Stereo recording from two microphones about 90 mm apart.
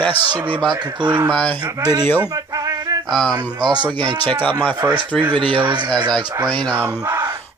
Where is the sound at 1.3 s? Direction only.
15° left (ahead or behind).